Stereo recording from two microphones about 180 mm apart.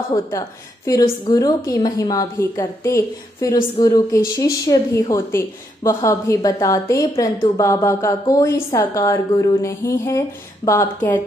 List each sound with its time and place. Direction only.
0.1 s a woman's voice: 20° left (ahead or behind)